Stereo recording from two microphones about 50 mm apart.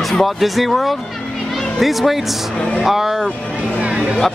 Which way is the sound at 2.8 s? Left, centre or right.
Centre.